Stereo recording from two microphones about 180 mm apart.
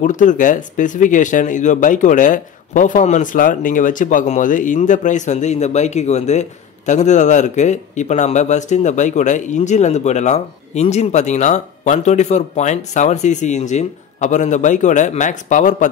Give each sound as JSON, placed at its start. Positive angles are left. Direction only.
{"t": 0.0, "sound": "speech", "side_deg": 45}